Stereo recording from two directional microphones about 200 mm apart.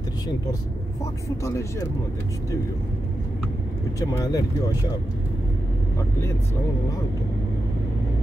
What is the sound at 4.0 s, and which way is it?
Speech, 15° left (ahead or behind).